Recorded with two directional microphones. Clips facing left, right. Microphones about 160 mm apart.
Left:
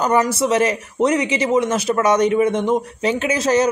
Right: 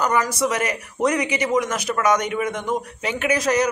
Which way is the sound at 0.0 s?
30° left (ahead or behind).